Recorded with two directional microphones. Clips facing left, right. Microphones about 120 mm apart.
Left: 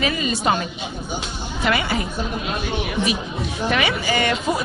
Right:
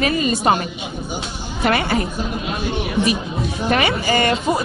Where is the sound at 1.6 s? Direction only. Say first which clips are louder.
Right 3 dB; 45° right (ahead or behind).